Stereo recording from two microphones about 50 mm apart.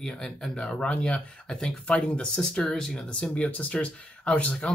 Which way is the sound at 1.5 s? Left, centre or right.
Centre.